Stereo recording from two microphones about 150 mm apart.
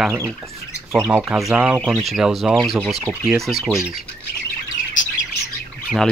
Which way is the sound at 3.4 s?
Centre (ahead or behind).